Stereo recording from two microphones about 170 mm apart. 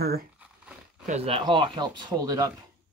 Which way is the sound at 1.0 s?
40° right (ahead or behind).